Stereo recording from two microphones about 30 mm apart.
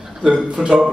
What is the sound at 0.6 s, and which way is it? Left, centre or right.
Speech, centre.